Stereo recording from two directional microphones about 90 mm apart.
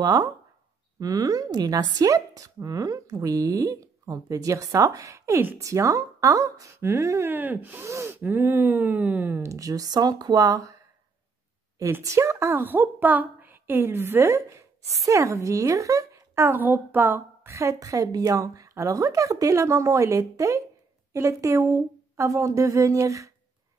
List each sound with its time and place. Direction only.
0.0 s a woman's voice: 45° right (ahead or behind); by 9.4 s 20° right (ahead or behind)
9.4 s speech: 40° right (ahead or behind)
12.0 s a woman's voice: 35° right (ahead or behind)